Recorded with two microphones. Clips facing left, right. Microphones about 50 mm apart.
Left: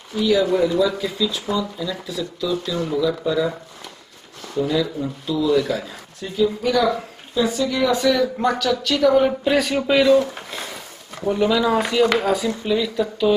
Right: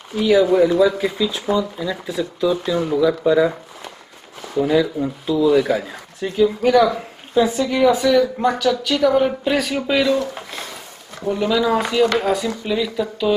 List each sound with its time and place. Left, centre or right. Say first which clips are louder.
0.1 s speech: right 3 dB; right
7.8 s a woman's voice: right 4 dB; centre
11.2 s a woman's voice: even; centre